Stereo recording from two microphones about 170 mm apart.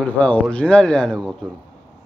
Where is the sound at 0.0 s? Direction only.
10° left (ahead or behind).